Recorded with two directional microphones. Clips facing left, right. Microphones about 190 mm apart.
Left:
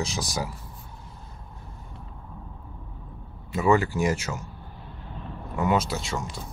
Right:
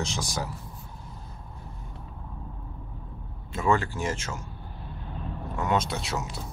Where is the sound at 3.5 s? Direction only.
10° left (ahead or behind).